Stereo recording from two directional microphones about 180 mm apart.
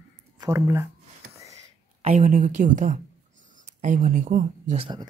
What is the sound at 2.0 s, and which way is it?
Speech, 40° right (ahead or behind).